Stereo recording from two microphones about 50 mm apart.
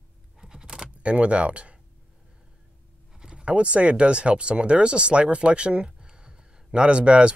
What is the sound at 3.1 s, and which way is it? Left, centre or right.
Speech, centre.